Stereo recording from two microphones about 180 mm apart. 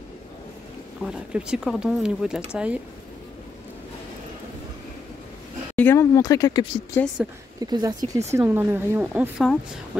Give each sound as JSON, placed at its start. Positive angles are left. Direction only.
{"t": 1.0, "sound": "speech", "side_deg": -5}
{"t": 5.8, "sound": "speech", "side_deg": 15}
{"t": 7.6, "sound": "speech", "side_deg": -20}